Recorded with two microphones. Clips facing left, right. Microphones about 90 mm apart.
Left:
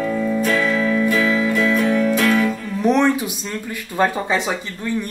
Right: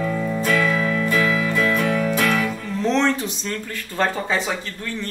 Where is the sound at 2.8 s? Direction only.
15° left (ahead or behind).